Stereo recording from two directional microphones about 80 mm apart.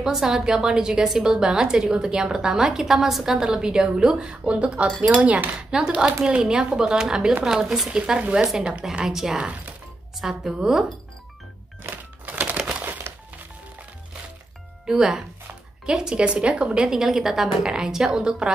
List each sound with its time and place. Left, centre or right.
0.0 s a woman's voice: centre
8.0 s a woman's voice: centre
11.8 s typewriter: right
14.9 s a woman's voice: centre